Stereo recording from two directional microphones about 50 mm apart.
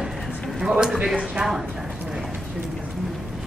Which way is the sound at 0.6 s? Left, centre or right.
Centre.